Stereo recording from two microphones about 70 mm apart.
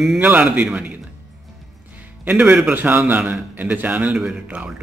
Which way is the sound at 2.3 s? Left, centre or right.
Right.